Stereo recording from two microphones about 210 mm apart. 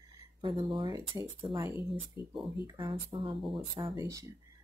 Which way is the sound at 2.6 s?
25° right (ahead or behind).